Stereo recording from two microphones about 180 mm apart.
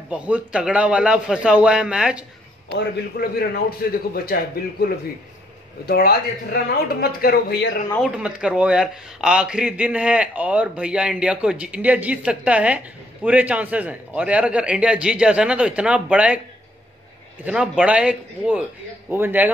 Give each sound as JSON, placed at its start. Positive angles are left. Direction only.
{"t": 0.1, "sound": "a man's voice", "side_deg": -5}
{"t": 2.7, "sound": "a man's voice", "side_deg": 65}
{"t": 8.0, "sound": "speech", "side_deg": -5}
{"t": 17.4, "sound": "speech", "side_deg": -5}